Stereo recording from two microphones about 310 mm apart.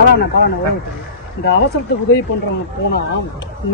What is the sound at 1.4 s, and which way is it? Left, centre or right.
Speech, left.